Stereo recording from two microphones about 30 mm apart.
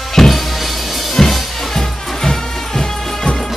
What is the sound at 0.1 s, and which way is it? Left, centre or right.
Music, centre.